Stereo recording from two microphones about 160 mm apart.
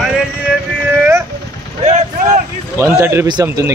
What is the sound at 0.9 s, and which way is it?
Speech, 15° right (ahead or behind).